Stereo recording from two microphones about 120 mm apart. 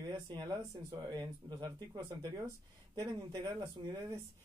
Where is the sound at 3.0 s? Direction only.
35° right (ahead or behind).